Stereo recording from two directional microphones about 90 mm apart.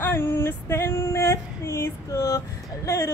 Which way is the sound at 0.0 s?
25° left (ahead or behind).